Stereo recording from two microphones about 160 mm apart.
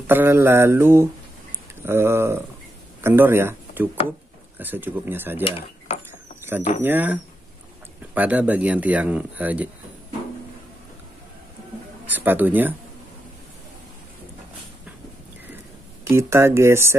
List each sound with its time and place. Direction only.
0.0 s speech: 15° right (ahead or behind)
6.4 s a sound: 15° right (ahead or behind)
6.8 s speech: 10° right (ahead or behind)
12.1 s speech: 10° right (ahead or behind)
16.0 s speech: 15° right (ahead or behind)